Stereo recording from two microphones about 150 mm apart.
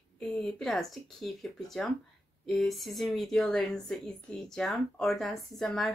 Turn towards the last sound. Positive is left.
turn(degrees=5)  # may be behind; listen again after turning